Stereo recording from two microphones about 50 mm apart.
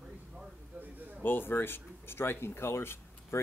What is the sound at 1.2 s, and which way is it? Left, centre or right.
Speech, left.